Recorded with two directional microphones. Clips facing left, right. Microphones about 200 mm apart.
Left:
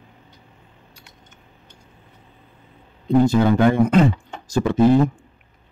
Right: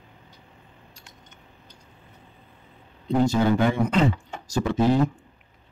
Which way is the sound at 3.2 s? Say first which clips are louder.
Left 5 dB; 55° left (ahead or behind).